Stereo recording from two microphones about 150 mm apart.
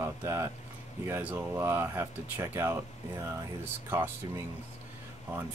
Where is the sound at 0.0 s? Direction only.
15° right (ahead or behind).